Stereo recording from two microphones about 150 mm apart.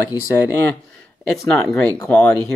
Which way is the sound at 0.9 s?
Centre (ahead or behind).